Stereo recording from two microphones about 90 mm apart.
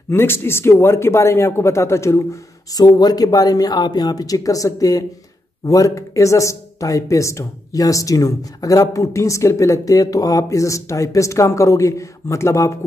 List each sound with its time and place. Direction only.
0.1 s speech: 25° left (ahead or behind)
2.7 s speech: 45° left (ahead or behind)